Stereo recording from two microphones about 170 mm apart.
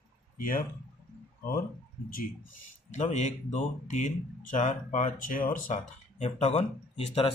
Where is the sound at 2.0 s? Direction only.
55° left (ahead or behind).